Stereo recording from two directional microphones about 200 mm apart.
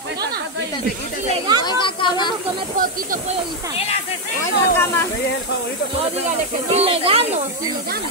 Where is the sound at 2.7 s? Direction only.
45° right (ahead or behind).